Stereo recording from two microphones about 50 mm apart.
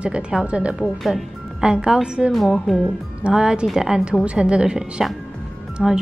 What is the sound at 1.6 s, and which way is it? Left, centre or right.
Speech, centre.